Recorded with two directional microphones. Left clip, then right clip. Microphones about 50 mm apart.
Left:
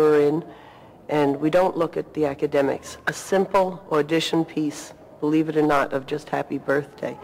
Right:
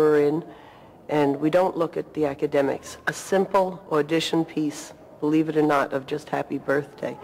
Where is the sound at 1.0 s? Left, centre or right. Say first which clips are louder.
Left 1 dB; left.